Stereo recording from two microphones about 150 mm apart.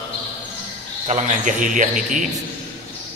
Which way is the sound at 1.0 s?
55° right (ahead or behind).